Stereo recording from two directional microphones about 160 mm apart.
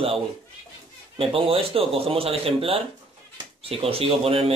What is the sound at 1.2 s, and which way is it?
Speech, 35° right (ahead or behind).